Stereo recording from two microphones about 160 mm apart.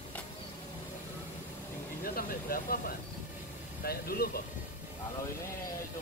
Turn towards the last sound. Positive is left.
turn(degrees=75)  # may be behind; listen again after turning